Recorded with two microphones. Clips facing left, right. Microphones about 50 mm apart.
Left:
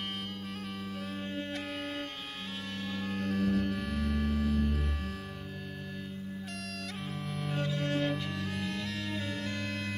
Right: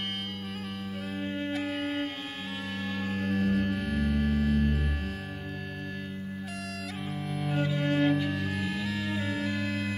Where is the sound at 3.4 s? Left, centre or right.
Right.